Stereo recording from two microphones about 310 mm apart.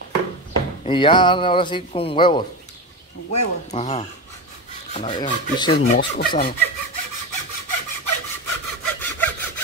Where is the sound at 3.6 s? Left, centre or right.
Centre.